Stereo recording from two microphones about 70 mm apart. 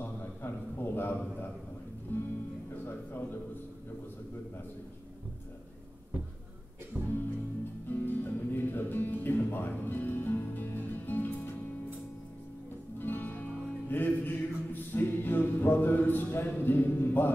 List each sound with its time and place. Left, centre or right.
0.0 s a sound: left
2.1 s music: left
2.9 s a sound: left
6.9 s music: right
7.9 s music: left
13.0 s music: left